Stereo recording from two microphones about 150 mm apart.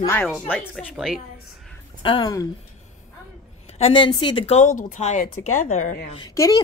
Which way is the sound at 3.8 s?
35° left (ahead or behind).